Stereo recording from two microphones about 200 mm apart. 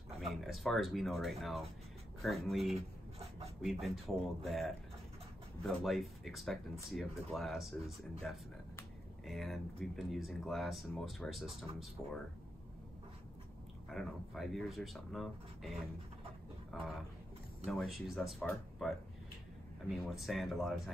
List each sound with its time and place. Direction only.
0.3 s speech: centre (ahead or behind)
13.8 s speech: centre (ahead or behind)